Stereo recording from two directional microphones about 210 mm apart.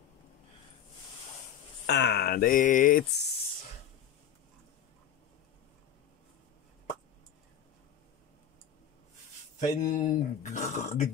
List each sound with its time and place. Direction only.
1.9 s speech: 55° left (ahead or behind)
9.6 s speech: 35° left (ahead or behind)